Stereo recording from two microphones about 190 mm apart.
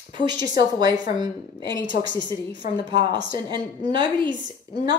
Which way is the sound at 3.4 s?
25° right (ahead or behind).